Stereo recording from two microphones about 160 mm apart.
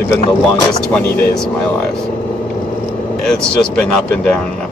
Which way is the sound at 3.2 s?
5° left (ahead or behind).